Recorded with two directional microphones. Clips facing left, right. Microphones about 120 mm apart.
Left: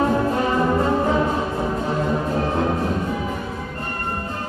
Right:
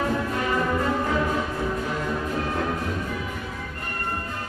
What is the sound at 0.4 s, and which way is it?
Brass instrument, 30° left (ahead or behind).